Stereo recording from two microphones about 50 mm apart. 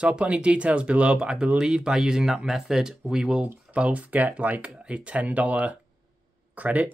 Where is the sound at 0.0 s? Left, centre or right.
Right.